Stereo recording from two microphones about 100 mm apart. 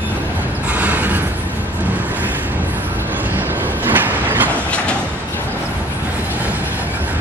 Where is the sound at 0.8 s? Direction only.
15° right (ahead or behind).